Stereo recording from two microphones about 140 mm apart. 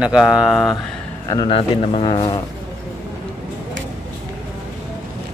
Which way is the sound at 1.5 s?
45° left (ahead or behind).